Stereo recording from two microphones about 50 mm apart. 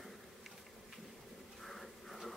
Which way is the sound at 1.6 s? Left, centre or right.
Centre.